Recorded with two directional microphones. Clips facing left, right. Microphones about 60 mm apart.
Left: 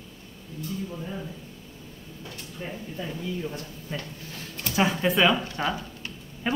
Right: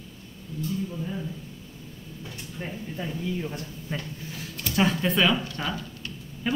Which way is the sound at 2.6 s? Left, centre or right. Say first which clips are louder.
Even; right.